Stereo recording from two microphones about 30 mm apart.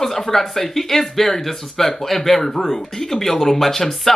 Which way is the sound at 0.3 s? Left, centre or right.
Centre.